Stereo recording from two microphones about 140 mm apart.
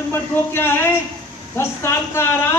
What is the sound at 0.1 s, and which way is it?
A man's voice, 15° left (ahead or behind).